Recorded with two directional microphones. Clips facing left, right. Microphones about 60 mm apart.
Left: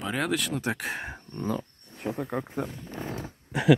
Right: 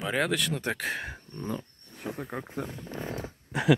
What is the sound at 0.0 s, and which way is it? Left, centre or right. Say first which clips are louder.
Speech: right 1 dB; centre.